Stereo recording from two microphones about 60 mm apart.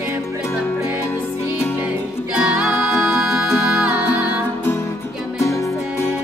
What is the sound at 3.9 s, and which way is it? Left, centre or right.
Music, right.